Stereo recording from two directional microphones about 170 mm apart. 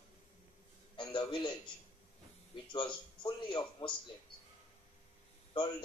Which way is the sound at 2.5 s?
25° left (ahead or behind).